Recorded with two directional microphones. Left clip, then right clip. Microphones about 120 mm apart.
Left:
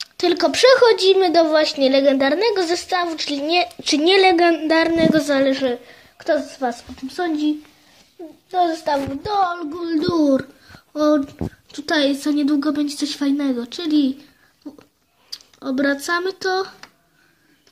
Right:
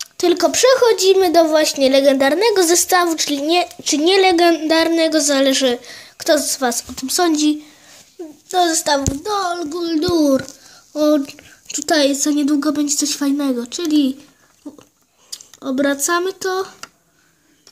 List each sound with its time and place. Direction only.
0.0 s speech: 15° right (ahead or behind)
2.5 s speech: 30° right (ahead or behind)
2.9 s speech: 45° right (ahead or behind)
3.4 s speech: 15° right (ahead or behind)
3.8 s speech: 5° right (ahead or behind)
5.5 s a woman's voice: 25° right (ahead or behind)
9.2 s speech: centre (ahead or behind)
10.9 s speech: 10° left (ahead or behind)
11.7 s speech: centre (ahead or behind)
12.9 s speech: centre (ahead or behind)
14.8 s a sound: 5° right (ahead or behind)